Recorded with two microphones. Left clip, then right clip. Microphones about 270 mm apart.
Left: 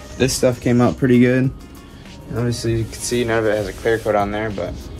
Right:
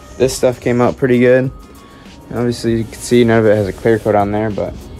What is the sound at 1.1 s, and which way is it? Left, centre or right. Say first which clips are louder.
Speech: right 6 dB; right.